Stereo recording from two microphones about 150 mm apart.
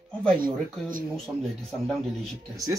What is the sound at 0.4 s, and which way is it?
Speech, 65° right (ahead or behind).